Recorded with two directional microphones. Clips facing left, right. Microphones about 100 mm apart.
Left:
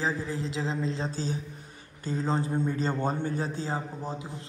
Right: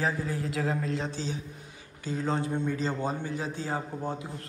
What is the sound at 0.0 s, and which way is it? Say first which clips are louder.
A man's voice: even; 25° left (ahead or behind).